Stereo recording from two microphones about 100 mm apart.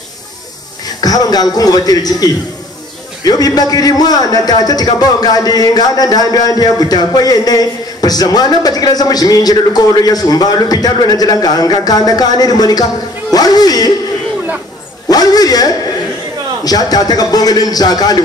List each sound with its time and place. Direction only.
1.0 s a man's voice: 40° left (ahead or behind)
15.0 s a man's voice: 40° left (ahead or behind)